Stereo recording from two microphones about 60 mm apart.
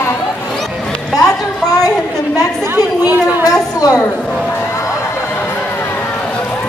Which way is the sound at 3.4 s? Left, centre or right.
Left.